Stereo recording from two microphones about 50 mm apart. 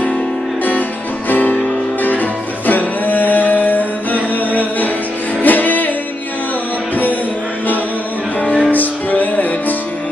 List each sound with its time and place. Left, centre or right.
1.3 s music: left
8.6 s music: left